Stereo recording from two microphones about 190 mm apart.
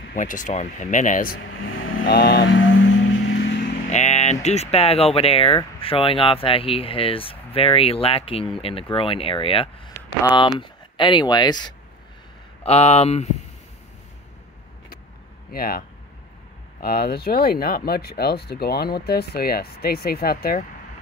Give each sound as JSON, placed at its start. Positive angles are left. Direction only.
{"t": 0.1, "sound": "speech", "side_deg": 45}
{"t": 1.6, "sound": "vehicle", "side_deg": 90}
{"t": 2.0, "sound": "a sound", "side_deg": 55}
{"t": 3.9, "sound": "speech", "side_deg": 35}
{"t": 12.6, "sound": "speech", "side_deg": 35}
{"t": 15.5, "sound": "speech", "side_deg": 50}
{"t": 16.8, "sound": "speech", "side_deg": 55}